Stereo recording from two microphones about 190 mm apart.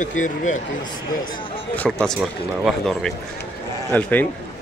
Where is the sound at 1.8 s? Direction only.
5° left (ahead or behind).